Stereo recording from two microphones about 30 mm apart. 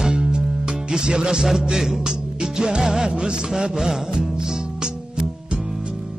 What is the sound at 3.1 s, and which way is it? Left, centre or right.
Music, right.